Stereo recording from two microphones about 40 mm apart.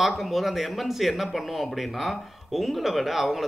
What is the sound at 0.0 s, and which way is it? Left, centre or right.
Speech, centre.